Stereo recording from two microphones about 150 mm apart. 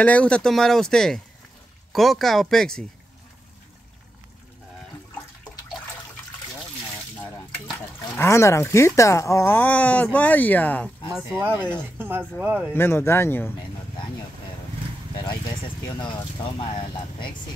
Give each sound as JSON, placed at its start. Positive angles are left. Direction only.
{"t": 0.0, "sound": "speech", "side_deg": 10}
{"t": 8.0, "sound": "speech", "side_deg": 20}
{"t": 11.3, "sound": "speech", "side_deg": -15}
{"t": 12.7, "sound": "speech", "side_deg": 15}
{"t": 15.2, "sound": "speech", "side_deg": 30}